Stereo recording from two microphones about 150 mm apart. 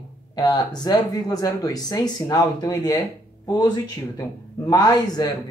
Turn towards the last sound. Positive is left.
turn(degrees=25)  # may be behind; listen again after turning